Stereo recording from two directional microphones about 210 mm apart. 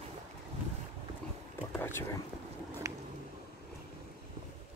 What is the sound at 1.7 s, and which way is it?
Whispering, 10° left (ahead or behind).